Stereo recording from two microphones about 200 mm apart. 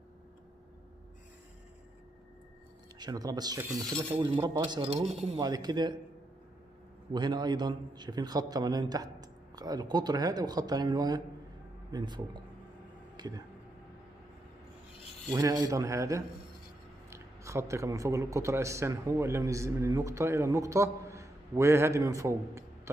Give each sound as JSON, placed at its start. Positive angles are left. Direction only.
{"t": 3.0, "sound": "a man's voice", "side_deg": -20}
{"t": 4.8, "sound": "speech", "side_deg": -30}
{"t": 5.4, "sound": "a man's voice", "side_deg": -20}
{"t": 7.1, "sound": "a man's voice", "side_deg": -20}
{"t": 13.1, "sound": "a sound", "side_deg": -20}
{"t": 15.2, "sound": "a man's voice", "side_deg": -20}